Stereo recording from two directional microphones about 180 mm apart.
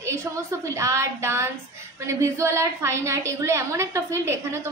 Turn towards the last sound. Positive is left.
turn(degrees=-15)  # may be behind; listen again after turning